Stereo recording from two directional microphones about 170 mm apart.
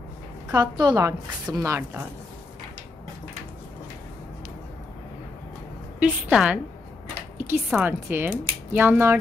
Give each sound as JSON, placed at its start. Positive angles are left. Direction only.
{"t": 0.5, "sound": "a woman's voice", "side_deg": -25}
{"t": 5.9, "sound": "speech", "side_deg": -10}